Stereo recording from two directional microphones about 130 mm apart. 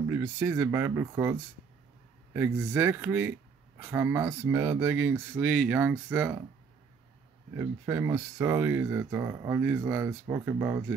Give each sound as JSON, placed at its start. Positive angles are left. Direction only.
{"t": 0.1, "sound": "speech", "side_deg": -25}
{"t": 7.5, "sound": "speech", "side_deg": -20}